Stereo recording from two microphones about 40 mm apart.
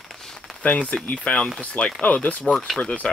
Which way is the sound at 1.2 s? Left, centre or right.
Left.